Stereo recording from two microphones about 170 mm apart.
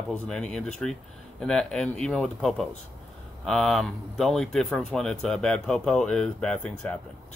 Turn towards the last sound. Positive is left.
turn(degrees=5)  # may be behind; listen again after turning